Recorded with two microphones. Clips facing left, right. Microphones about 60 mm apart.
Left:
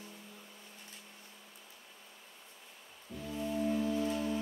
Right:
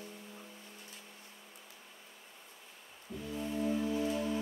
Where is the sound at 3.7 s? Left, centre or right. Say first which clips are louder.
Even; centre.